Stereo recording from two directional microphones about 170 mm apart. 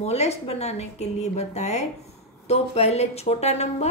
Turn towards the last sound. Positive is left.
turn(degrees=40)  # may be behind; listen again after turning